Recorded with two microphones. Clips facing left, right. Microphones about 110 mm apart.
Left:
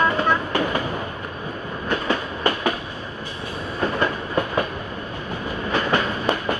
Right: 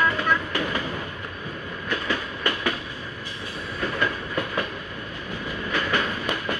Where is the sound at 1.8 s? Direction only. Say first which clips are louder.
Left 5 dB; 25° left (ahead or behind).